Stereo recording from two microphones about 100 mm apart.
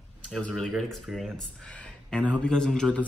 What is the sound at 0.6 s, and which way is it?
Speech, 5° left (ahead or behind).